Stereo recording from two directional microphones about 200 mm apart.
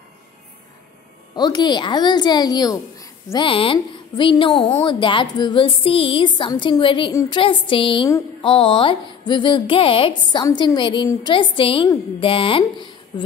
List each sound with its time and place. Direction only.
1.3 s a woman's voice: 20° left (ahead or behind)